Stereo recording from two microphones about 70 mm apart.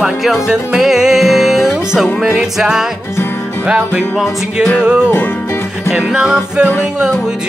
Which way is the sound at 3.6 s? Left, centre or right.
Centre.